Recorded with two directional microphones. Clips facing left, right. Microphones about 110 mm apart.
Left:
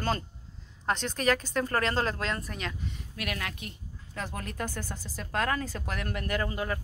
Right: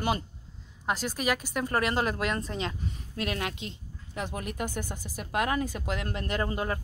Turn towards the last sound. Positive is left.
turn(degrees=-25)  # may be behind; listen again after turning